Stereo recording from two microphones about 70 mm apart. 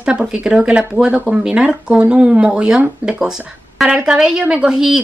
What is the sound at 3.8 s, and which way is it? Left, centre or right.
A woman's voice, centre.